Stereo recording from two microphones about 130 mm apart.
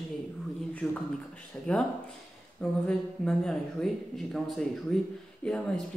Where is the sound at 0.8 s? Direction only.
20° left (ahead or behind).